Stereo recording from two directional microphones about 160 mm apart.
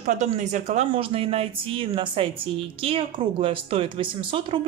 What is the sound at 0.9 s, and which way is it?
A woman's voice, 35° right (ahead or behind).